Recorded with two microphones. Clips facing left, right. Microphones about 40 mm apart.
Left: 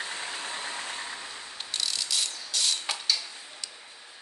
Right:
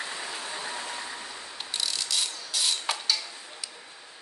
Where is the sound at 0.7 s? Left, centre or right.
Right.